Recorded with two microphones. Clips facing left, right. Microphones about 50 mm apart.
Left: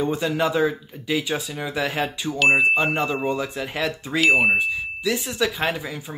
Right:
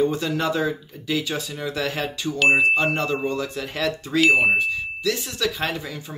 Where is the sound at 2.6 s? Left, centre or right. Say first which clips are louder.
Even; centre.